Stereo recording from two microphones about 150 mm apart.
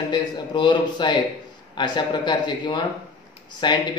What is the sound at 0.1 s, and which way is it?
A man's voice, 30° left (ahead or behind).